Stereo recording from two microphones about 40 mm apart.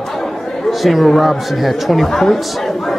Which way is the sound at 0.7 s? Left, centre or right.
Centre.